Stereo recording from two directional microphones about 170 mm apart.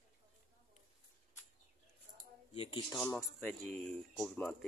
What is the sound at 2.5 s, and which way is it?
Speech, 35° left (ahead or behind).